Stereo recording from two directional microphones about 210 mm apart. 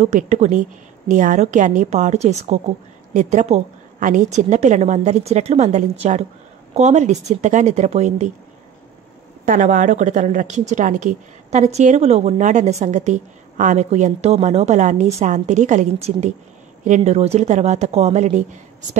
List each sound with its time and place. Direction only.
0.0 s a woman's voice: 35° right (ahead or behind)
9.5 s a woman's voice: 40° right (ahead or behind)